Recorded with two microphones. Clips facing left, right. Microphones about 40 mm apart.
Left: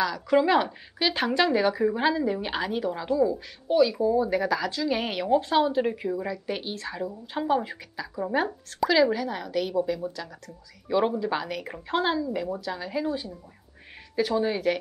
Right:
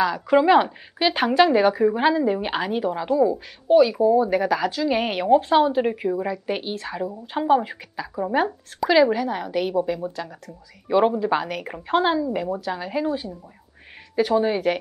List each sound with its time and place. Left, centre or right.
0.0 s a woman's voice: centre